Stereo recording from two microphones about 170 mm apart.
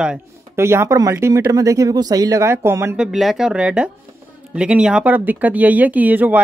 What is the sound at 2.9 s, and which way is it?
Speech, centre (ahead or behind).